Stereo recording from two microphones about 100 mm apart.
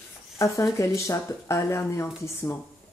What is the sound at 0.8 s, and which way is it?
Speech, 30° left (ahead or behind).